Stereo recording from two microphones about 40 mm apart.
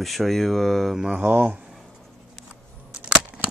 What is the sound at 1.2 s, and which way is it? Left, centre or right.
Speech, right.